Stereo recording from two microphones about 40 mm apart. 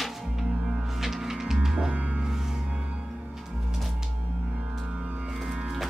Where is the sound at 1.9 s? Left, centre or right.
Right.